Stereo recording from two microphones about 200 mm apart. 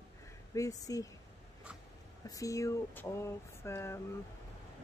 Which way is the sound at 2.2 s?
15° left (ahead or behind).